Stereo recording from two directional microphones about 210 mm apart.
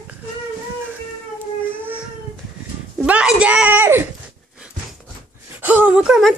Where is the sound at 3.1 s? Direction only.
5° right (ahead or behind).